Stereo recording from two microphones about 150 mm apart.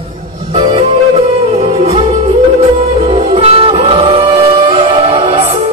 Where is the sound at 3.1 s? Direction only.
40° right (ahead or behind).